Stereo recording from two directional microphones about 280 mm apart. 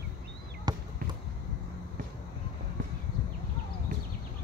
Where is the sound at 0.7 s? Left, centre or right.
Centre.